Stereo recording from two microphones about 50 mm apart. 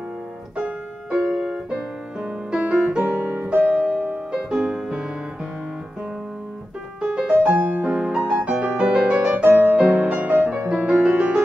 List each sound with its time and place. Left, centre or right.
0.6 s piano: centre
1.4 s music: right
2.6 s music: right
3.2 s piano: right
3.7 s music: right
4.3 s music: centre
7.0 s music: centre
7.4 s music: right
9.4 s music: right
10.5 s music: centre